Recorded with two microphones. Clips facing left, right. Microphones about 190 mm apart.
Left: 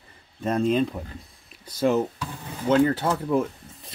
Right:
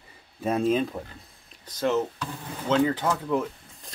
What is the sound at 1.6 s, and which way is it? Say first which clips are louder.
Speech: left 3 dB; 10° left (ahead or behind).